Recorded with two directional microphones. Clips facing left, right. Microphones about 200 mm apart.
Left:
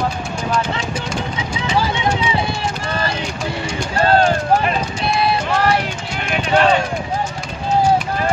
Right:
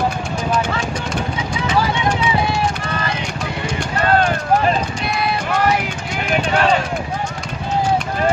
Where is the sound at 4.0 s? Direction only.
30° left (ahead or behind).